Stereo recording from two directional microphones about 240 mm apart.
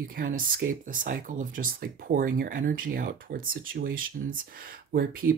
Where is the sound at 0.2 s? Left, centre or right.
Right.